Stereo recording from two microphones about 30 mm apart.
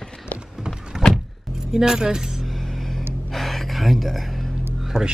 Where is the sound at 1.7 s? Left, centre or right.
Right.